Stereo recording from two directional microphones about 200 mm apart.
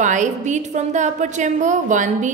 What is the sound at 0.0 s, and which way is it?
A woman's voice, 40° right (ahead or behind).